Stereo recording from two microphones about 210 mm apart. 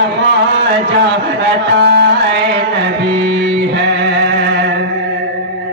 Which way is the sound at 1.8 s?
50° right (ahead or behind).